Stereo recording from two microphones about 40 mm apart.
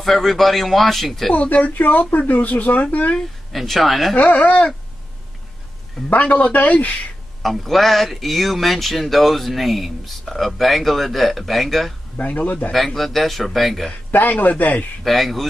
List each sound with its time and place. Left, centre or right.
0.0 s speech: centre
1.3 s speech: left
3.5 s speech: centre
4.1 s speech: left
6.2 s speech: left
7.4 s speech: centre
12.2 s speech: left
12.7 s speech: centre
14.1 s a man's voice: left
15.0 s speech: centre